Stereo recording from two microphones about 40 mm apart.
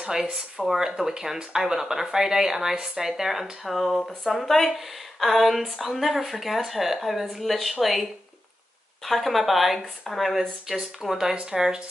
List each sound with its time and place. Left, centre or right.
0.0 s speech: centre